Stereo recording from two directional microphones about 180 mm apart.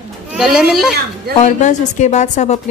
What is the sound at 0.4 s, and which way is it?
Speech, centre (ahead or behind).